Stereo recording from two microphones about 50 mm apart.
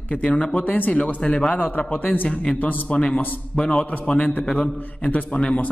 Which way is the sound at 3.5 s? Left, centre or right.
Centre.